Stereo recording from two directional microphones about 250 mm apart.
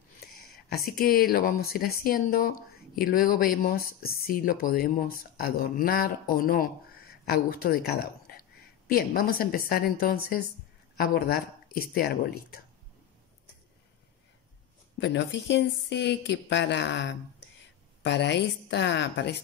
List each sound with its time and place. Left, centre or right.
0.7 s speech: left
15.0 s speech: left